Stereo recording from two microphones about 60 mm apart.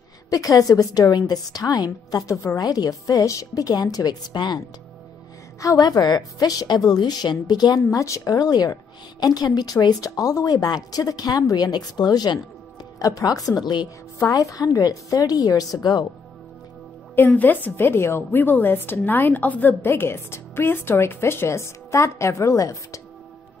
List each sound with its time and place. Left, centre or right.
0.3 s a woman's voice: left
5.6 s a woman's voice: left
7.4 s a woman's voice: left
12.0 s a woman's voice: left
13.0 s a woman's voice: left
14.2 s a woman's voice: left
17.1 s a woman's voice: left
19.8 s a woman's voice: left
21.5 s a woman's voice: left